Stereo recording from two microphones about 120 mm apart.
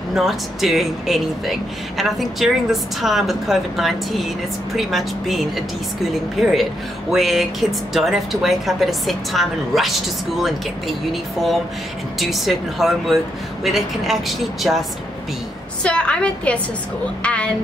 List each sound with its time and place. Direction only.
0.1 s speech: centre (ahead or behind)
6.4 s speech: centre (ahead or behind)
12.2 s speech: centre (ahead or behind)
15.8 s a woman's voice: 10° left (ahead or behind)